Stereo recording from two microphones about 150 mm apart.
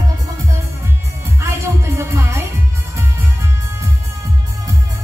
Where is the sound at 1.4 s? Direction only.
15° right (ahead or behind).